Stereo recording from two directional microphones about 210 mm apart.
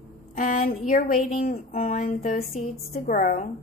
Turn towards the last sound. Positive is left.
turn(degrees=35)  # may be behind; listen again after turning